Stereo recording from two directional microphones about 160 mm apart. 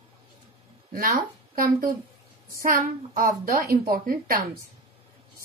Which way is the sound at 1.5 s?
65° right (ahead or behind).